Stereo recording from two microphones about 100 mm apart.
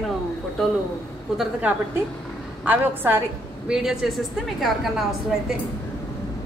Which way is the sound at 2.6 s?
20° right (ahead or behind).